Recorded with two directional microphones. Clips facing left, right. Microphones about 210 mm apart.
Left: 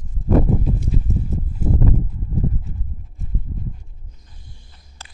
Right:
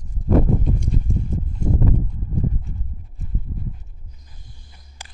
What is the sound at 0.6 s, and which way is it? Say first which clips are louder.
Clip-clop: left 1 dB; 5° left (ahead or behind).